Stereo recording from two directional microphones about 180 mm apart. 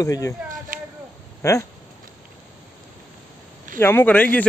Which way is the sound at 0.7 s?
50° right (ahead or behind).